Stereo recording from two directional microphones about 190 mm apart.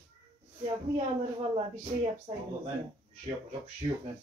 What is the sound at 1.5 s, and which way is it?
Speech, 30° right (ahead or behind).